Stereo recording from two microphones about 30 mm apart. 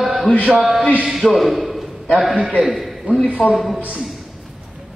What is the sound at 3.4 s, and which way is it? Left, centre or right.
Speech, left.